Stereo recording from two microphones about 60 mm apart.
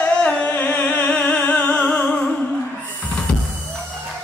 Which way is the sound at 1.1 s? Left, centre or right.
Left.